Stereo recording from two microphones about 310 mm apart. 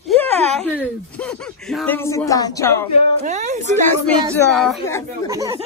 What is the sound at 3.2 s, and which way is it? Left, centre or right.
Speech, right.